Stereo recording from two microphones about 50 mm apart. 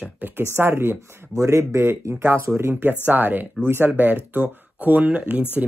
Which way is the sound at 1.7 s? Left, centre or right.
Right.